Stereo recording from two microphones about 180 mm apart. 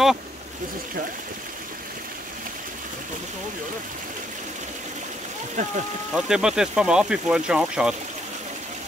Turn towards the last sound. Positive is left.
turn(degrees=-5)  # may be behind; listen again after turning